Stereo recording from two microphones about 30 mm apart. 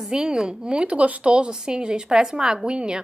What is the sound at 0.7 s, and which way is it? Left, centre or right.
Speech, right.